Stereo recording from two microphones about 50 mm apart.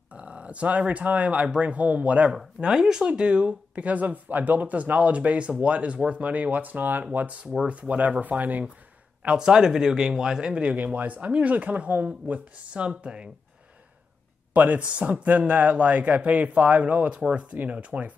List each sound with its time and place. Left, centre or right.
0.1 s speech: right
2.6 s speech: centre; by 7.1 s right
7.2 s speech: right
9.4 s speech: centre; by 12.4 s right
12.7 s speech: right
14.5 s speech: right